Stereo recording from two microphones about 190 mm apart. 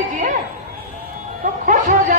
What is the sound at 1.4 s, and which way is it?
Speech, 40° right (ahead or behind).